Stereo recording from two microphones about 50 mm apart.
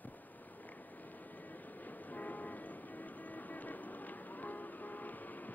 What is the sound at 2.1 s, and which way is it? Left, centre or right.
Vehicle, left.